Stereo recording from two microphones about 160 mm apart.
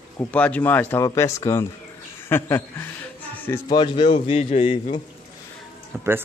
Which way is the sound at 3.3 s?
10° left (ahead or behind).